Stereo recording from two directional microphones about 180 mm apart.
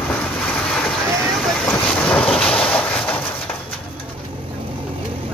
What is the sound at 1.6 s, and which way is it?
Vehicle, 5° left (ahead or behind).